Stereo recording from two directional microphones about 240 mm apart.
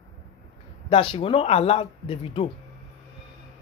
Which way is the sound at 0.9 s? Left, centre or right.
Left.